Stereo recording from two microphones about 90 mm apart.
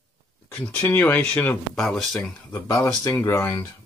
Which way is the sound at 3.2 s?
30° left (ahead or behind).